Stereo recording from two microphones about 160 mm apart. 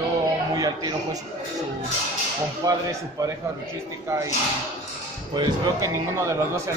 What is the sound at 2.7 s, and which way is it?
A man's voice, 20° right (ahead or behind).